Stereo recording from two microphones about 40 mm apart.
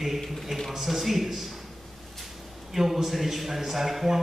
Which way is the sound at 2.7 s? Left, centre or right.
Centre.